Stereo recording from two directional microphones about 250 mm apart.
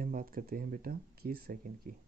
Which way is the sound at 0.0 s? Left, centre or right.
Right.